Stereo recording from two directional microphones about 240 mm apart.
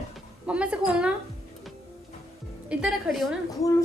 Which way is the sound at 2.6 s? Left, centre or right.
Centre.